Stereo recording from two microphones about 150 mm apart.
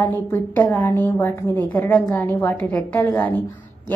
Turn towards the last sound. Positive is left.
turn(degrees=10)  # may be behind; listen again after turning